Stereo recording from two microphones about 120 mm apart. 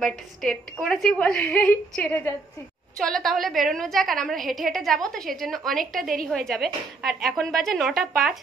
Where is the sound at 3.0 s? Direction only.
5° left (ahead or behind).